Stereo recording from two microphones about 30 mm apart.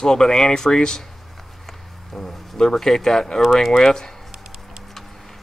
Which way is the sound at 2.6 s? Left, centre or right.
Centre.